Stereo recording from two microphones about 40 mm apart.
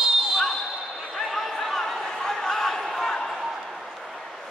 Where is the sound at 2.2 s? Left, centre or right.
Centre.